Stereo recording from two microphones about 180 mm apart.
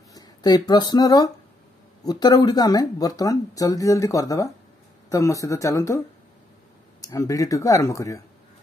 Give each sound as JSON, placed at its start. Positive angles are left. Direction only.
{"t": 0.1, "sound": "speech", "side_deg": 20}
{"t": 7.0, "sound": "speech", "side_deg": 20}